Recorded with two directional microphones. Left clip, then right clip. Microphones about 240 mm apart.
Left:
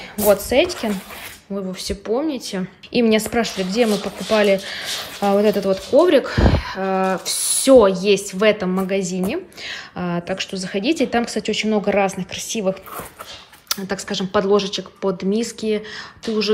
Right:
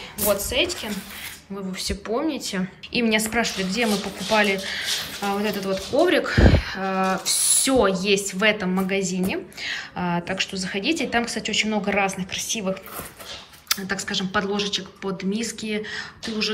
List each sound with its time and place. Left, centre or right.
1.7 s a woman's voice: centre